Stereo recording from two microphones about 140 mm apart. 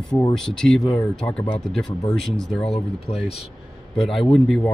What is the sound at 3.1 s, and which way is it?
Speech, 45° left (ahead or behind).